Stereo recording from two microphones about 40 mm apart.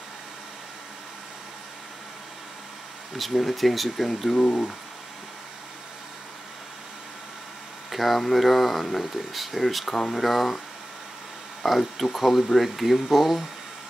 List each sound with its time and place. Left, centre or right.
3.2 s speech: centre
4.4 s speech: left
7.9 s speech: centre
11.6 s speech: centre